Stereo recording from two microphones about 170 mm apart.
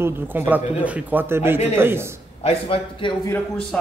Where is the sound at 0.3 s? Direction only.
10° right (ahead or behind).